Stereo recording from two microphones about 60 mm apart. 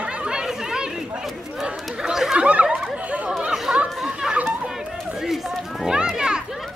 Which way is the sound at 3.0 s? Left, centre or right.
Right.